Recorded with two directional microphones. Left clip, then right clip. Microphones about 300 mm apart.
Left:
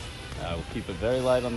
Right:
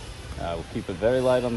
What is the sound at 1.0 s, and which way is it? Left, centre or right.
Speech, right.